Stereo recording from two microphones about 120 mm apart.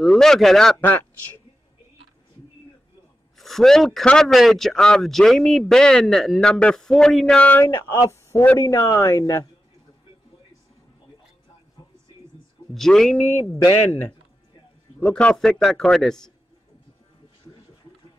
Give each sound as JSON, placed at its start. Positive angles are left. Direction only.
{"t": 0.0, "sound": "a man's voice", "side_deg": 5}
{"t": 3.3, "sound": "a man's voice", "side_deg": 0}
{"t": 12.7, "sound": "a man's voice", "side_deg": 0}
{"t": 13.2, "sound": "speech", "side_deg": 20}
{"t": 15.0, "sound": "a man's voice", "side_deg": 10}